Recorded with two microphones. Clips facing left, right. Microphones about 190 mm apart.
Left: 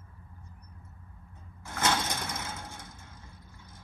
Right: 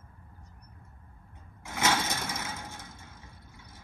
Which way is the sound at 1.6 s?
5° right (ahead or behind).